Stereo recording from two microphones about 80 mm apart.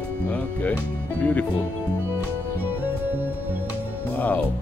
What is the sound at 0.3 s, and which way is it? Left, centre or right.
Music, centre.